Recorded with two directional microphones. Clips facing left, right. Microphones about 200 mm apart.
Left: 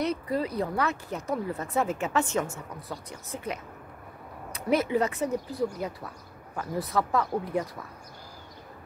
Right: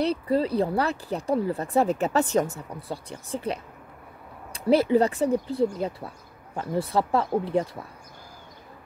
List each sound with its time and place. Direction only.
0.0 s speech: 30° right (ahead or behind)